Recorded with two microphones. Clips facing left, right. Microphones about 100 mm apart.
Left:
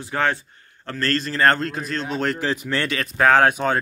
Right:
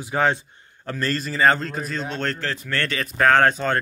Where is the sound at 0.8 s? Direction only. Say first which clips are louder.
Left 2 dB; 10° right (ahead or behind).